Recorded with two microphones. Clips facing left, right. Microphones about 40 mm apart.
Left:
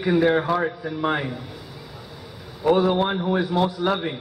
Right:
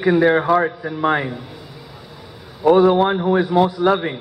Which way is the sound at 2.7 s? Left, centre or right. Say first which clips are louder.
Right 6 dB; centre.